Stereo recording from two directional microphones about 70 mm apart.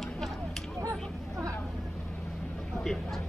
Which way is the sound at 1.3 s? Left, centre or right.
Right.